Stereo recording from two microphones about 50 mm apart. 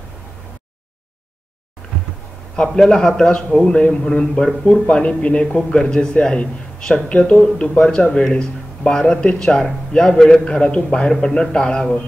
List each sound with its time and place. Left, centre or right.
2.5 s a man's voice: centre
9.4 s a man's voice: centre